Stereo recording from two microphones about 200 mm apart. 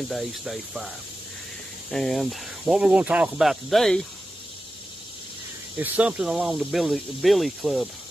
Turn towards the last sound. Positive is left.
turn(degrees=0)  # may be behind; listen again after turning